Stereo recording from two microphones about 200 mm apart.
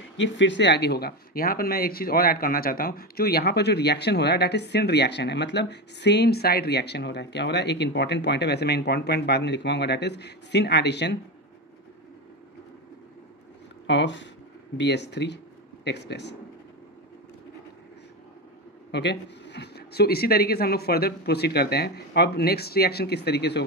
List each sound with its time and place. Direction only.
0.2 s speech: 65° left (ahead or behind)
13.8 s speech: 65° left (ahead or behind)
18.9 s speech: 60° left (ahead or behind)